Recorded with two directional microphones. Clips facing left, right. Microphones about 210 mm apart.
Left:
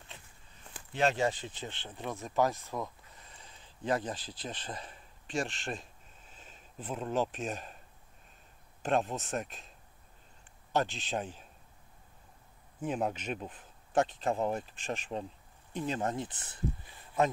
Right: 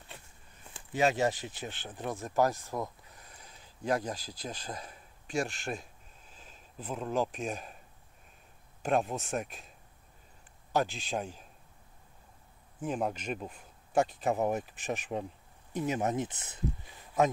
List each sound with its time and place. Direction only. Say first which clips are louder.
0.9 s speech: right 1 dB; 10° right (ahead or behind)
3.3 s a sound: even; 5° right (ahead or behind)
8.8 s speech: right 1 dB; 5° right (ahead or behind)
10.9 s speech: right 1 dB; centre (ahead or behind)
12.8 s speech: even; 5° left (ahead or behind)
16.0 s speech: right 3 dB; 20° right (ahead or behind)